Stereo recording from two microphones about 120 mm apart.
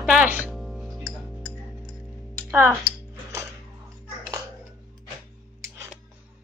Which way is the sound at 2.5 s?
20° right (ahead or behind).